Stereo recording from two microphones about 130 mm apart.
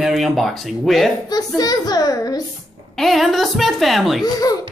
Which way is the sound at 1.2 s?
30° left (ahead or behind).